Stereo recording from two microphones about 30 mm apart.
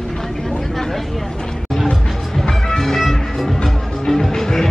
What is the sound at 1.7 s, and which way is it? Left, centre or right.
Music, centre.